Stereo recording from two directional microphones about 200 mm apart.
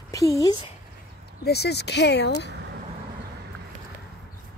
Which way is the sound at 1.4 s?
55° left (ahead or behind).